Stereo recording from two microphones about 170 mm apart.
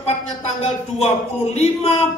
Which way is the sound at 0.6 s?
40° left (ahead or behind).